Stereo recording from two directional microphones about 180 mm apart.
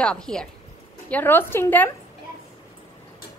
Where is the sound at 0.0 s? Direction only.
5° left (ahead or behind).